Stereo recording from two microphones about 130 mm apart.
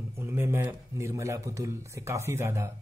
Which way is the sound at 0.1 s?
20° right (ahead or behind).